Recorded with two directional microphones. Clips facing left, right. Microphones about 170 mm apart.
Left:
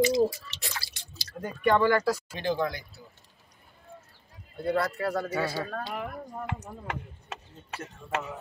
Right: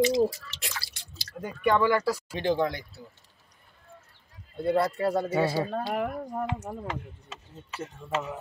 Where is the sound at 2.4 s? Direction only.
25° right (ahead or behind).